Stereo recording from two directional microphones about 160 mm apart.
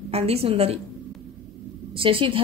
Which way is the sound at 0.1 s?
40° right (ahead or behind).